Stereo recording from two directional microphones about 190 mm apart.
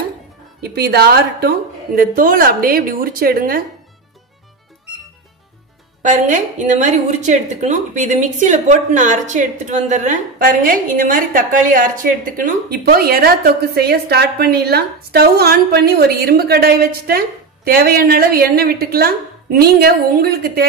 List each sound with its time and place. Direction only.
0.6 s a woman's voice: 55° right (ahead or behind)
6.0 s a woman's voice: 40° right (ahead or behind)